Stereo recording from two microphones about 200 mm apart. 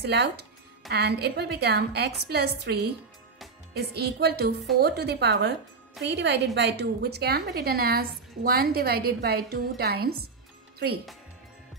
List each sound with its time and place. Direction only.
0.0 s a woman's voice: 55° right (ahead or behind)